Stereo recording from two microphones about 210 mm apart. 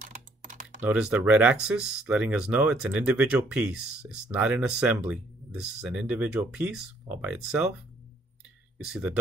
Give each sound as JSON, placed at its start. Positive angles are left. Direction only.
{"t": 0.0, "sound": "typing", "side_deg": -40}
{"t": 0.7, "sound": "speech", "side_deg": -5}
{"t": 8.8, "sound": "speech", "side_deg": -5}